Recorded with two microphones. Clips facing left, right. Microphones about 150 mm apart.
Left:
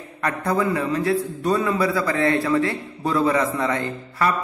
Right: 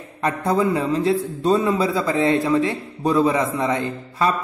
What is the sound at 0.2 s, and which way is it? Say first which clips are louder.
A man's voice: right 2 dB; 25° right (ahead or behind).